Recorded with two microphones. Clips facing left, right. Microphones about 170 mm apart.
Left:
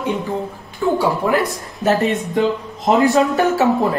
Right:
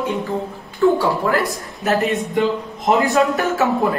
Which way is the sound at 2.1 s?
Centre (ahead or behind).